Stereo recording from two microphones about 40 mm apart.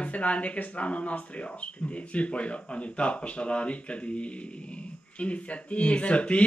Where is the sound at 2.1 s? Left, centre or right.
Left.